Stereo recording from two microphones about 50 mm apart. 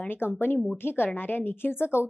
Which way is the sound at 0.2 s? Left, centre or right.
Left.